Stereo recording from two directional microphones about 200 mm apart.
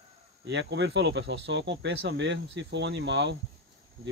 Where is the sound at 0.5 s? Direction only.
60° right (ahead or behind).